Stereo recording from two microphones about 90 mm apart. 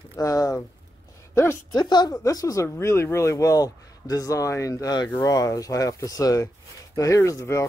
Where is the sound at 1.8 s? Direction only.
50° left (ahead or behind).